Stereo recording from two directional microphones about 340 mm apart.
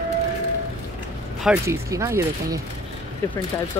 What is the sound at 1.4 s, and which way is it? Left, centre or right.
Speech, centre.